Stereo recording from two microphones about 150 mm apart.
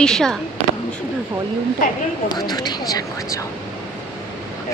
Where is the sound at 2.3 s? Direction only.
25° left (ahead or behind).